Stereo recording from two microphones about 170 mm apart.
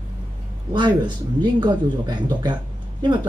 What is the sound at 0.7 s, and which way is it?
Speech, 25° right (ahead or behind).